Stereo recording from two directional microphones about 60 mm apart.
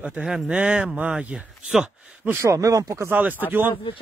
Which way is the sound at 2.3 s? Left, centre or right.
Right.